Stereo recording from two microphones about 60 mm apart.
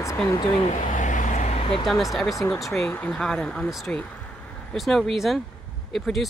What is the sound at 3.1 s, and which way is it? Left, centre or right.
Speech, centre.